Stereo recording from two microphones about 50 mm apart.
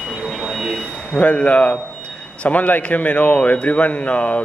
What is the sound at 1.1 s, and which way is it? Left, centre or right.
A man's voice, left.